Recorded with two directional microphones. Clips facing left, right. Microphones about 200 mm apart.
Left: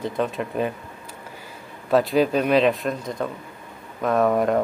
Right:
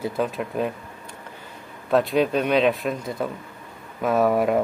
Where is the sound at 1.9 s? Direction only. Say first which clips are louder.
Left 1 dB; centre (ahead or behind).